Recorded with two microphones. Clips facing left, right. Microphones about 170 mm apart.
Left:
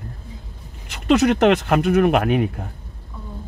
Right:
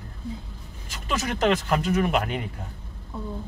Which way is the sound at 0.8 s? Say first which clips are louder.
Left 13 dB; 65° left (ahead or behind).